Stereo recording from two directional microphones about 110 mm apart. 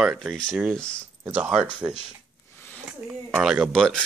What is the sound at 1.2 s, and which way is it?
Speech, 15° right (ahead or behind).